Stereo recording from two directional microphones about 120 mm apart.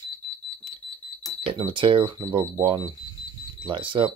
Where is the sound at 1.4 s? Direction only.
45° right (ahead or behind).